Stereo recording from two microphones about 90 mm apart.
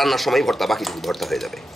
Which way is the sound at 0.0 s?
Centre (ahead or behind).